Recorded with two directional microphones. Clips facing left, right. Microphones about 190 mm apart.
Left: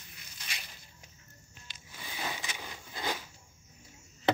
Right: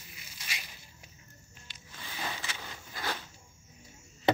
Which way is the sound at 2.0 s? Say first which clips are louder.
Even; 15° left (ahead or behind).